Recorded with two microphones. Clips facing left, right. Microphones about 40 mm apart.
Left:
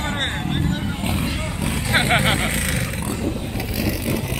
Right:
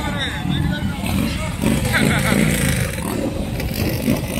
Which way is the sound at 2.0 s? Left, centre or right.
Left.